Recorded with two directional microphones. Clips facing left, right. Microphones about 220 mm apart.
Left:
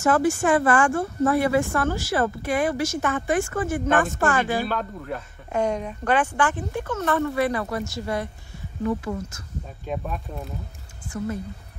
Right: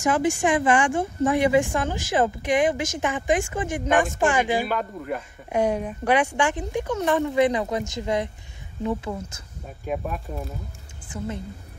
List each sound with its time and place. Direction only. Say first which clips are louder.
0.0 s speech: left 1 dB; 15° right (ahead or behind)
9.8 s speech: right 2 dB; 5° right (ahead or behind)